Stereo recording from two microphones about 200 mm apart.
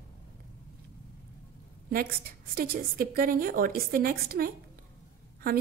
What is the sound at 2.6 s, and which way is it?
A woman's voice, 45° right (ahead or behind).